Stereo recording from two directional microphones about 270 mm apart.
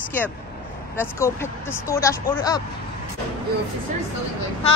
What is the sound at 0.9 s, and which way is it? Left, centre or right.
Speech, centre.